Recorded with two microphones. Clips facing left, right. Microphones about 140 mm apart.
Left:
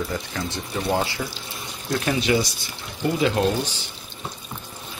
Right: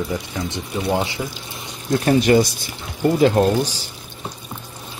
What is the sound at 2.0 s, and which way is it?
Speech, 45° right (ahead or behind).